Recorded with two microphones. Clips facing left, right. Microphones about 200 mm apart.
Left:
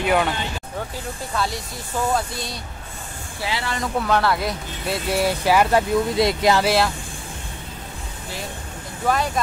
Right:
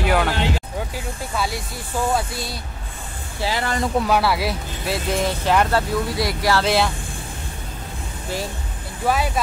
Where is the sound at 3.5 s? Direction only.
45° right (ahead or behind).